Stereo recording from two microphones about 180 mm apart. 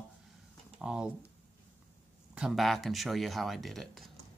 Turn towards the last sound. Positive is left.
turn(degrees=0)  # may be behind; listen again after turning